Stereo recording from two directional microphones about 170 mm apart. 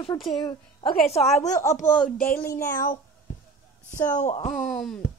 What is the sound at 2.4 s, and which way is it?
Speech, 15° left (ahead or behind).